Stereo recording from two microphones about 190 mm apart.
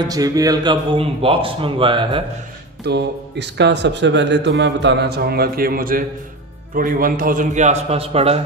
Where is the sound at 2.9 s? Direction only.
65° right (ahead or behind).